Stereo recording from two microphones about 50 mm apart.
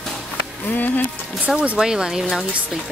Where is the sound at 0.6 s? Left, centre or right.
Left.